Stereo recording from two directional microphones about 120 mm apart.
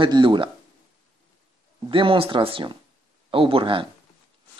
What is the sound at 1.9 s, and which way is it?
Speech, 45° right (ahead or behind).